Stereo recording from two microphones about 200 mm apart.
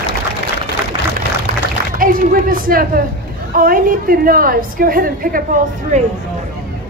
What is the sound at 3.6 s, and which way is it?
A woman's voice, 45° right (ahead or behind).